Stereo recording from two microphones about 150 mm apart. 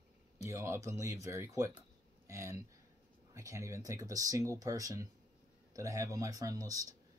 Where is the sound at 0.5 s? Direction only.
20° right (ahead or behind).